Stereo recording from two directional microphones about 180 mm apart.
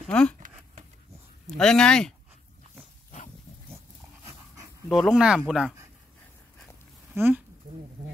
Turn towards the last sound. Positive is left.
turn(degrees=-10)  # may be behind; listen again after turning